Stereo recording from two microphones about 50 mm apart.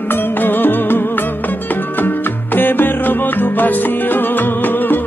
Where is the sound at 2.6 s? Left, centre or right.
Left.